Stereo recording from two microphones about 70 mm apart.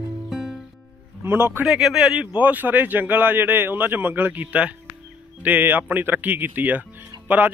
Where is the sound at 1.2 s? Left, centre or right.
Right.